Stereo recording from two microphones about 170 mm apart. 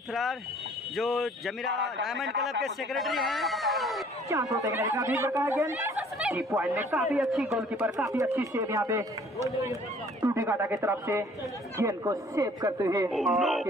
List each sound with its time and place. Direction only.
0.1 s speech: centre (ahead or behind)
4.3 s speech: 20° right (ahead or behind)
7.0 s speech: centre (ahead or behind)
8.4 s speech: 20° right (ahead or behind)
13.1 s speech: centre (ahead or behind)